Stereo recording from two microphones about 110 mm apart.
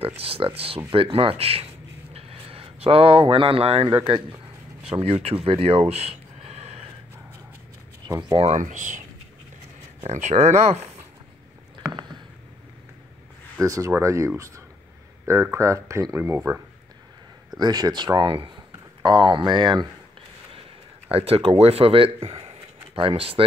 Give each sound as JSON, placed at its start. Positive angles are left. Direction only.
{"t": 0.2, "sound": "speech", "side_deg": -60}
{"t": 2.1, "sound": "a sound", "side_deg": -60}
{"t": 3.9, "sound": "speech", "side_deg": -45}
{"t": 4.8, "sound": "speech", "side_deg": -60}
{"t": 8.3, "sound": "speech", "side_deg": -55}
{"t": 10.0, "sound": "speech", "side_deg": -85}
{"t": 11.9, "sound": "a sound", "side_deg": -40}
{"t": 13.6, "sound": "speech", "side_deg": -30}
{"t": 15.5, "sound": "speech", "side_deg": -30}
{"t": 17.6, "sound": "speech", "side_deg": -40}
{"t": 21.1, "sound": "speech", "side_deg": -60}